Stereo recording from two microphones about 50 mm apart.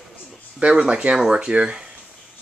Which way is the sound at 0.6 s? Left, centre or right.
Centre.